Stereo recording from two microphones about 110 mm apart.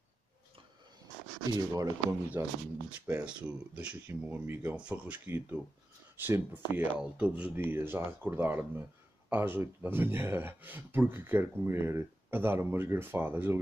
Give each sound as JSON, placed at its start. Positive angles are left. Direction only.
{"t": 1.5, "sound": "speech", "side_deg": -30}
{"t": 3.1, "sound": "speech", "side_deg": -10}